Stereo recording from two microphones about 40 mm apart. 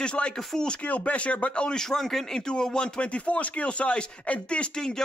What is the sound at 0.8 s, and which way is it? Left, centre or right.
Speech, left.